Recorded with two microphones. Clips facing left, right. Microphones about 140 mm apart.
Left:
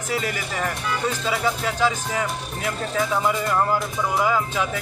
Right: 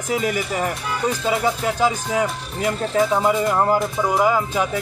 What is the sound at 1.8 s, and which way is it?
Speech, 15° right (ahead or behind).